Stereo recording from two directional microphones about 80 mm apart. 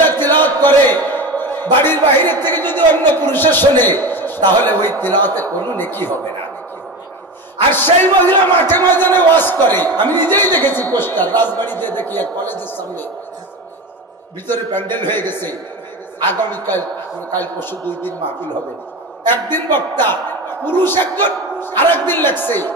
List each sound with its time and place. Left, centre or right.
0.2 s a sound: left
1.8 s a man's voice: left
7.7 s a man's voice: left
14.5 s a man's voice: left
19.3 s a man's voice: left